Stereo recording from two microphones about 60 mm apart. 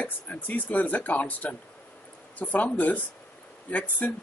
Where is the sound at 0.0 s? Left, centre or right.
Left.